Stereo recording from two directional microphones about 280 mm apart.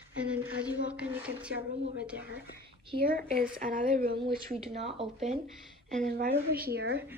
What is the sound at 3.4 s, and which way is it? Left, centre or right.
Speech, right.